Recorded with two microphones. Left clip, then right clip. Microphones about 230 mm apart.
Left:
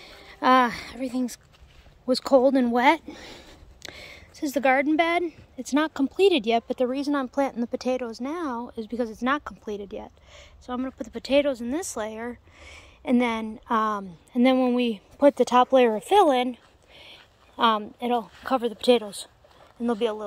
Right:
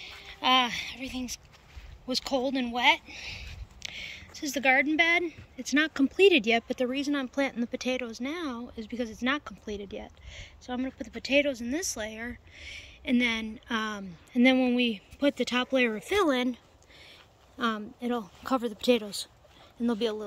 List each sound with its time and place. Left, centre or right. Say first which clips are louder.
0.4 s speech: left 5 dB; left
4.1 s speech: left 9 dB; centre
16.1 s a sound: left 7 dB; centre
17.6 s speech: left 9 dB; centre
19.8 s speech: left 4 dB; centre